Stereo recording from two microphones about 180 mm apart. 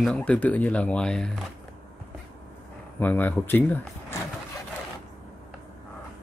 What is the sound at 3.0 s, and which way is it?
Speech, 10° left (ahead or behind).